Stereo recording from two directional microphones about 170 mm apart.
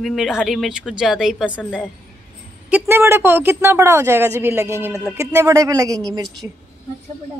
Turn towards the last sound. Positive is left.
turn(degrees=-20)  # may be behind; listen again after turning